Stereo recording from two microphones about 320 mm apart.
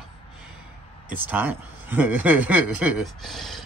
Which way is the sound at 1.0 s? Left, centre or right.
Centre.